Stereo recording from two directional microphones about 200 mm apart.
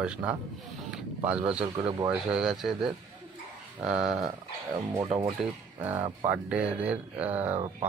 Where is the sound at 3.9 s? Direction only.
5° right (ahead or behind).